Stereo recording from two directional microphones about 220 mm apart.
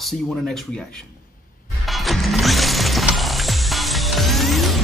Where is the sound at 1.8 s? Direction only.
Centre (ahead or behind).